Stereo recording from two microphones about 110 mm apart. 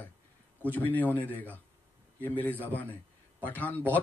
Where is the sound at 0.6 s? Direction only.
15° left (ahead or behind).